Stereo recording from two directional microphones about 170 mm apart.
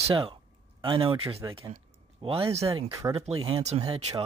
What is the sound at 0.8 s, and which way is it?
Speech, 30° right (ahead or behind).